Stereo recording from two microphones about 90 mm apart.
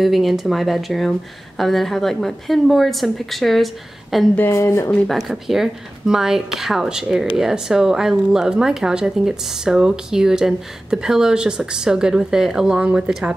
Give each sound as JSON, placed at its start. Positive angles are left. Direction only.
{"t": 0.0, "sound": "a woman's voice", "side_deg": 0}
{"t": 4.4, "sound": "speech", "side_deg": 30}
{"t": 4.9, "sound": "a woman's voice", "side_deg": 0}